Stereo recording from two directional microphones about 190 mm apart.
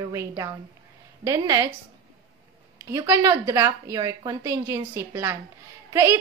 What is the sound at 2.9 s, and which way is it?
A woman's voice, 15° right (ahead or behind).